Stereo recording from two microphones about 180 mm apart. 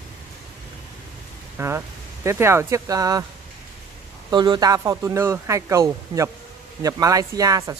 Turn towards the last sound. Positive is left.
turn(degrees=-20)  # may be behind; listen again after turning